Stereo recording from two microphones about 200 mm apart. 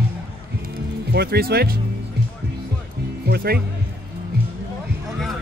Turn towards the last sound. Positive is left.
turn(degrees=-50)  # may be behind; listen again after turning